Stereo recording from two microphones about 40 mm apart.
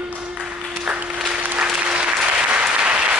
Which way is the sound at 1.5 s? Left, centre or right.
Right.